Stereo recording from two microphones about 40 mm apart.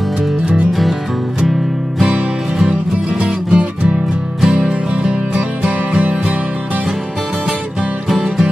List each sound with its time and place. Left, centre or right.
3.2 s music: right
8.1 s music: centre